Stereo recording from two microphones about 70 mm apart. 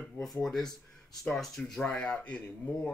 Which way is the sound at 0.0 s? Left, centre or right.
Centre.